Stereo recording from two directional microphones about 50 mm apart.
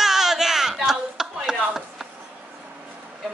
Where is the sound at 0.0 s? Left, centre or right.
Centre.